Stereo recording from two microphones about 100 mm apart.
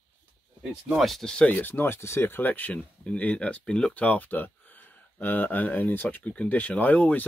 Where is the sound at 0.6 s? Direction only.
10° right (ahead or behind).